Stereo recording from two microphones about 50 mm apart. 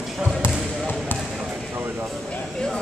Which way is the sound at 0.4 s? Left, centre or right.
Left.